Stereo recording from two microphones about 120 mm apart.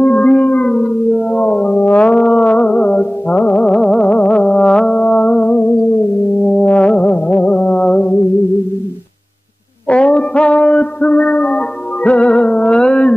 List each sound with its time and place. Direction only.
0.0 s music: 10° left (ahead or behind)
9.8 s music: 10° left (ahead or behind)